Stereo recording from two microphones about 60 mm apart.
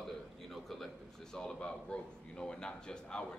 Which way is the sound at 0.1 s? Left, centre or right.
Centre.